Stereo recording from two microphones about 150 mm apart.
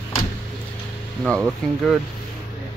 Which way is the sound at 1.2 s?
5° left (ahead or behind).